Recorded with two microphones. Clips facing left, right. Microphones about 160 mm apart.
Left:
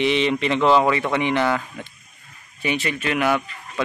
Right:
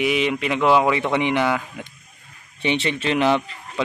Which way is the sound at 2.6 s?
25° right (ahead or behind).